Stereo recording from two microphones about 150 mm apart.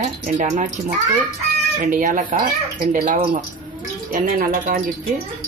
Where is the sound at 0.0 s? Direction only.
55° right (ahead or behind).